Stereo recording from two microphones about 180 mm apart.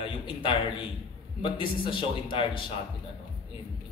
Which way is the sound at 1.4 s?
30° left (ahead or behind).